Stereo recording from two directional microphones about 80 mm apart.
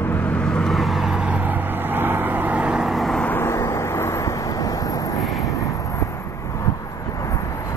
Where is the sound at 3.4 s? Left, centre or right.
Left.